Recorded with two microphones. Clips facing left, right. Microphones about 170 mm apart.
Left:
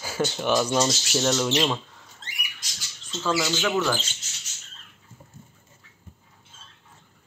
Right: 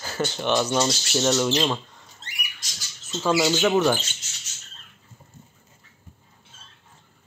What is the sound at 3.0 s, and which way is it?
Speech, 10° right (ahead or behind).